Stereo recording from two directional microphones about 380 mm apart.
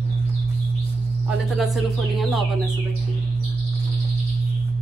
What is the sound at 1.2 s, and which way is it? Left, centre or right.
A woman's voice, centre.